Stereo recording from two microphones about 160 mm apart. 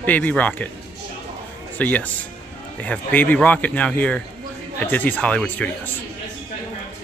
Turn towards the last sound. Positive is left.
turn(degrees=10)  # may be behind; listen again after turning